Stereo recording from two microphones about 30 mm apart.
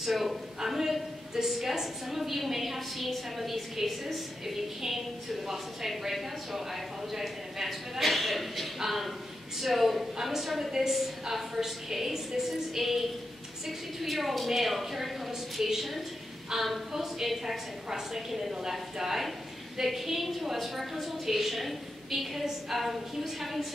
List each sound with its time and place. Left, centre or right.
0.0 s a woman's voice: centre
8.0 s a woman's voice: centre